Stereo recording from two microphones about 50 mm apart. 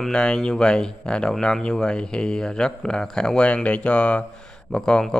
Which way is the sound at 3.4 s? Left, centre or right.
Left.